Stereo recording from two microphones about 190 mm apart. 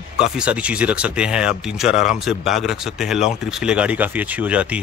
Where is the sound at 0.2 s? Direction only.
5° right (ahead or behind).